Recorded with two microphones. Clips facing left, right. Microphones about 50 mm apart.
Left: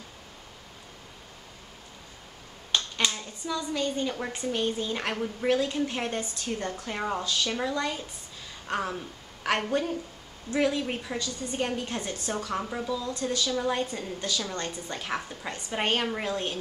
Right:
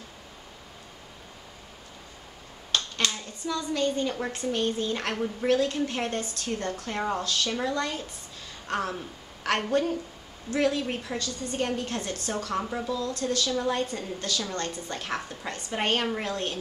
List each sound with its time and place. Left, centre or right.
2.7 s finger snapping: centre
3.1 s a woman's voice: centre
6.8 s a woman's voice: centre
11.1 s a woman's voice: centre
13.2 s a woman's voice: centre